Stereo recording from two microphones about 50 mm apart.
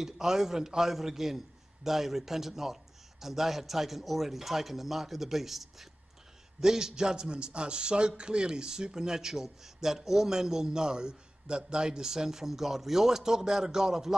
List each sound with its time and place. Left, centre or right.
0.0 s a man's voice: centre